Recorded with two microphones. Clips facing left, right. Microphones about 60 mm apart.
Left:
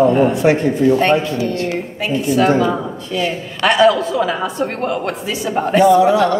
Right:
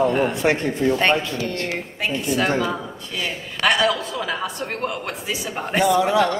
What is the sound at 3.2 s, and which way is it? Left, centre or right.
A woman's voice, centre.